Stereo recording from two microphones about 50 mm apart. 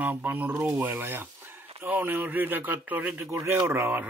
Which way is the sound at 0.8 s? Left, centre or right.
Right.